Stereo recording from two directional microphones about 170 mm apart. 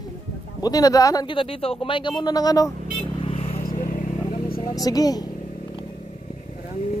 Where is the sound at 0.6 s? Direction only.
20° left (ahead or behind).